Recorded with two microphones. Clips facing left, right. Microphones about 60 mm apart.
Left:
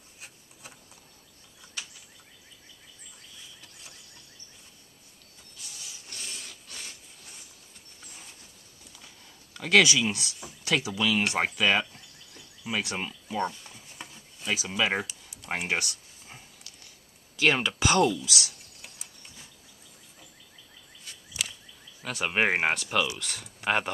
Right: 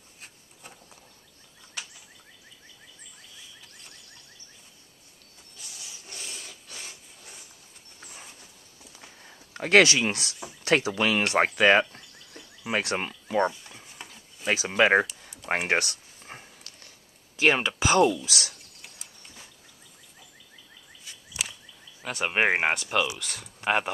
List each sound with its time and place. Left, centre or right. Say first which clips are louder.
6.0 s filing: right 1 dB; centre
8.9 s a sound: right 4 dB; right
10.0 s speech: right 2 dB; right
11.9 s a sound: right 3 dB; right
14.5 s speech: right 7 dB; right
15.5 s a sound: right 4 dB; right
17.4 s speech: right 2 dB; centre
18.2 s speech: even; right
22.0 s speech: right 2 dB; centre